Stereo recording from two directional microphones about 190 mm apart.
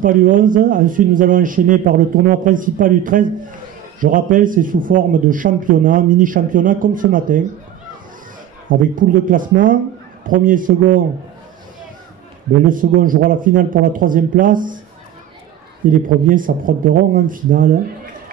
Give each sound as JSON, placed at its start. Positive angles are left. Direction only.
{"t": 0.0, "sound": "a man's voice", "side_deg": -45}
{"t": 8.6, "sound": "a man's voice", "side_deg": -45}
{"t": 12.6, "sound": "a man's voice", "side_deg": -45}
{"t": 15.9, "sound": "a man's voice", "side_deg": -45}